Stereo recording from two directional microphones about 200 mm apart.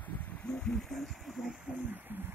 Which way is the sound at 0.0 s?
10° left (ahead or behind).